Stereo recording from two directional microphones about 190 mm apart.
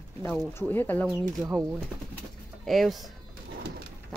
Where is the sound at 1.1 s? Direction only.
15° right (ahead or behind).